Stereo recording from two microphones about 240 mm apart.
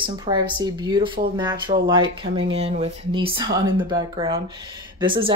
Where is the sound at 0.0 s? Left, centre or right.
Centre.